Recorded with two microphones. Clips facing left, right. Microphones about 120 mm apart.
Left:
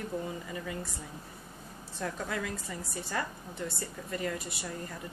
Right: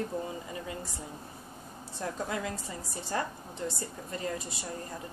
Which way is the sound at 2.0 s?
20° right (ahead or behind).